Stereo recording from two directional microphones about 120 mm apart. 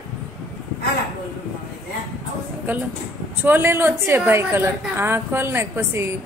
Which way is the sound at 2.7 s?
15° right (ahead or behind).